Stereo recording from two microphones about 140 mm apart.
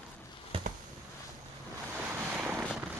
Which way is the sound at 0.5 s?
40° right (ahead or behind).